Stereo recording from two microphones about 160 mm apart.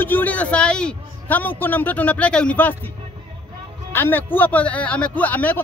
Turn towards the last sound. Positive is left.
turn(degrees=10)  # may be behind; listen again after turning